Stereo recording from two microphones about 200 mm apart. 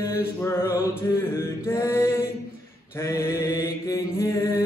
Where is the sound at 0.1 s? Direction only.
10° left (ahead or behind).